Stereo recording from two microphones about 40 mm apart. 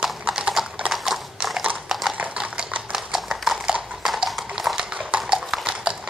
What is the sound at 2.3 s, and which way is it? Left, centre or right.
Horse, centre.